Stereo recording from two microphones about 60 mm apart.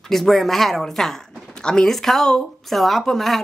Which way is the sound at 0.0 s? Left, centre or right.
Centre.